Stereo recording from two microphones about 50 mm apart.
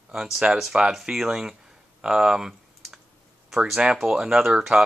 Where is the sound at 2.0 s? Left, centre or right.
Centre.